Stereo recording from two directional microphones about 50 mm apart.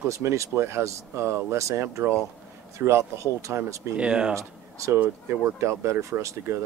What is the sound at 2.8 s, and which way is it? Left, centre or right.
Speech, right.